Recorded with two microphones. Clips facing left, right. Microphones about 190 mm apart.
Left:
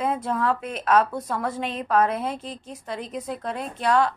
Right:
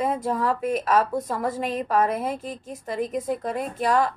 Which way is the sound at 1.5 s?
45° right (ahead or behind).